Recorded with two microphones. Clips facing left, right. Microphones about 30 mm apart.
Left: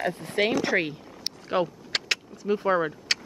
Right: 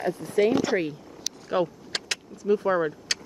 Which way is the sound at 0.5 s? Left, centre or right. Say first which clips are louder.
Right 2 dB; left.